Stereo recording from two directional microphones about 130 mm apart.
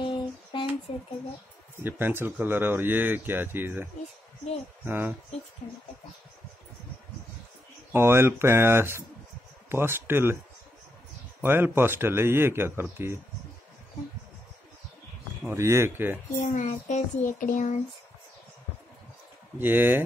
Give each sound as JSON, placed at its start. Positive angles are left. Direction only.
{"t": 0.0, "sound": "a sound", "side_deg": 40}
{"t": 1.8, "sound": "speech", "side_deg": -15}
{"t": 7.9, "sound": "speech", "side_deg": -20}
{"t": 11.4, "sound": "speech", "side_deg": -15}
{"t": 15.4, "sound": "speech", "side_deg": -20}
{"t": 16.5, "sound": "child singing", "side_deg": 80}
{"t": 19.6, "sound": "speech", "side_deg": -15}